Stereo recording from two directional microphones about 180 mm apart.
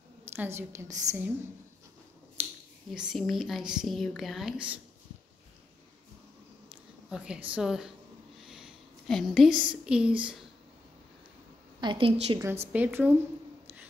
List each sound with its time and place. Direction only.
0.4 s a woman's voice: 15° right (ahead or behind)
2.4 s finger snapping: 10° right (ahead or behind)
2.9 s a woman's voice: centre (ahead or behind)
7.1 s a woman's voice: 5° right (ahead or behind)
11.8 s a woman's voice: 30° right (ahead or behind)
12.7 s a woman's voice: 10° right (ahead or behind)